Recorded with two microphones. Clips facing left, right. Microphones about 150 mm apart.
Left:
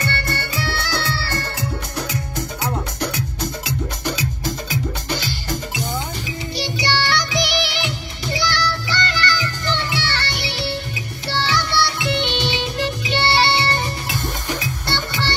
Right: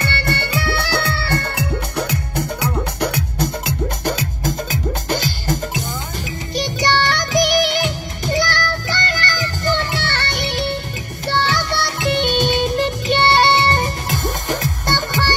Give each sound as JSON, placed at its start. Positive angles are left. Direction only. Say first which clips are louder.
{"t": 0.0, "sound": "music", "louder": "right 3 dB", "side_deg": -65}